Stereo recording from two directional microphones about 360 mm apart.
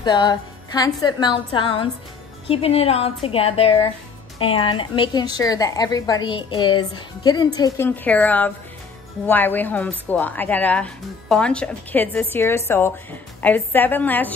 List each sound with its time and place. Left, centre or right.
0.0 s a woman's voice: centre